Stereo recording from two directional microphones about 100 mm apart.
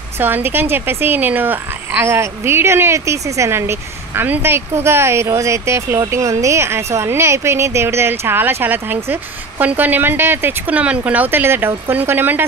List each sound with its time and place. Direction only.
0.2 s speech: 20° right (ahead or behind)